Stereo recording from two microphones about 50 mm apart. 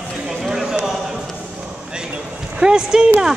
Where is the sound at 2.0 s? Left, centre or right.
Centre.